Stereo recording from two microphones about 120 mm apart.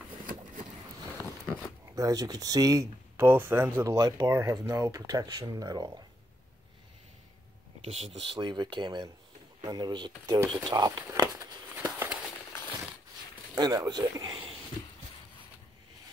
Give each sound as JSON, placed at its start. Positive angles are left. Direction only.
{"t": 2.0, "sound": "speech", "side_deg": -30}
{"t": 7.8, "sound": "speech", "side_deg": -55}
{"t": 11.3, "sound": "a sound", "side_deg": -15}
{"t": 13.6, "sound": "speech", "side_deg": -35}